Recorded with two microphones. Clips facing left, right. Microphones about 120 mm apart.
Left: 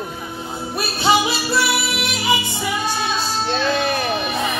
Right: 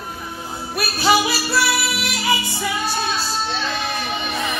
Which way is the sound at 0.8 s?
25° left (ahead or behind).